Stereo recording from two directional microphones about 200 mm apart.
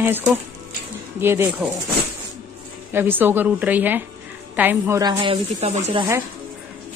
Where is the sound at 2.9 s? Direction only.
10° right (ahead or behind); by 6.0 s 30° right (ahead or behind).